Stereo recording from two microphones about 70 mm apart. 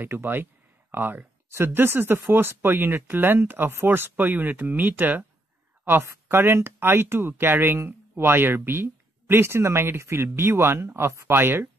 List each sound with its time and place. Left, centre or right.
0.0 s speech: right